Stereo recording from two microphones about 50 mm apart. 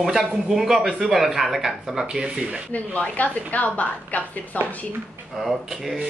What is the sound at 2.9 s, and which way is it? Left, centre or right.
A woman's voice, left.